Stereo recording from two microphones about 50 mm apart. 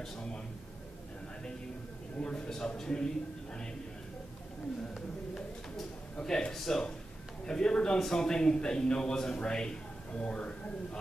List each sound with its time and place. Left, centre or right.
0.0 s a man's voice: centre
2.1 s a man's voice: centre
6.2 s a man's voice: centre